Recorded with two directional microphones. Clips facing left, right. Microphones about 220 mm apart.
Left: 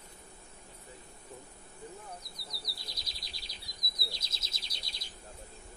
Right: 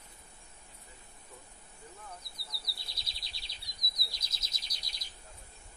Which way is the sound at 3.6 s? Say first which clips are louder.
Left 6 dB; 25° left (ahead or behind).